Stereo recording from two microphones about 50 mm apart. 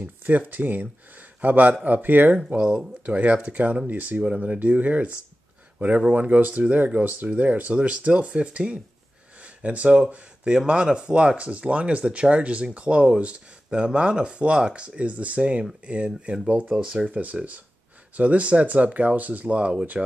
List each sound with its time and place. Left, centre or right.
0.0 s speech: right
2.3 s speech: centre; by 4.2 s right
4.2 s speech: centre
4.6 s speech: right
16.1 s speech: centre
16.4 s speech: right
17.1 s speech: right